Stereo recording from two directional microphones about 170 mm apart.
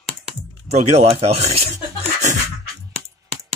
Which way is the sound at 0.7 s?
40° right (ahead or behind).